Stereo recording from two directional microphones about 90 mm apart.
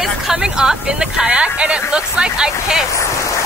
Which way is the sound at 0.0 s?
5° right (ahead or behind).